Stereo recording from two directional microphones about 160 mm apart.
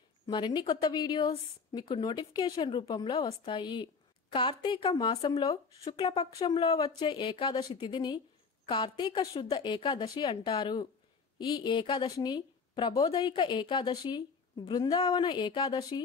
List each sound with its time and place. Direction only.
0.3 s speech: 30° left (ahead or behind)